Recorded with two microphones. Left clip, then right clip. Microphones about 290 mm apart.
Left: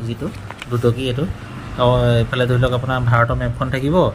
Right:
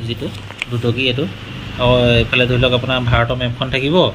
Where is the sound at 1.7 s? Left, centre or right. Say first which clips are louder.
Right 3 dB; left.